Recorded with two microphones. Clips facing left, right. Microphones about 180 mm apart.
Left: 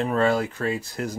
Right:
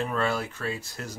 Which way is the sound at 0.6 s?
15° left (ahead or behind).